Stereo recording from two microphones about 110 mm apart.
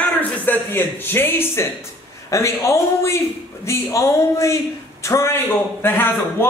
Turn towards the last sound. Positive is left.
turn(degrees=20)  # may be behind; listen again after turning